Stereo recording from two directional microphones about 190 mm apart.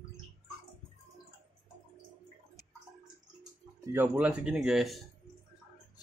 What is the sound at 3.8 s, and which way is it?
Speech, 10° right (ahead or behind).